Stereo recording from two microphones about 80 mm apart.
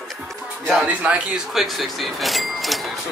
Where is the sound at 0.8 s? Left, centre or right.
Centre.